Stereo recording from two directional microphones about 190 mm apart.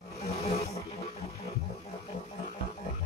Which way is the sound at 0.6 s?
15° left (ahead or behind).